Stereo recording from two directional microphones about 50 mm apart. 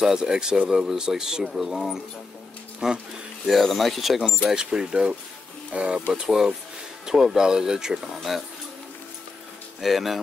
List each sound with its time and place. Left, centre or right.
0.0 s speech: centre
3.4 s speech: centre
4.5 s speech: centre
9.8 s speech: centre